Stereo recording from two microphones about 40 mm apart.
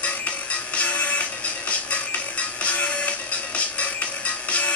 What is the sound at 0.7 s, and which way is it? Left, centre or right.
Music, left.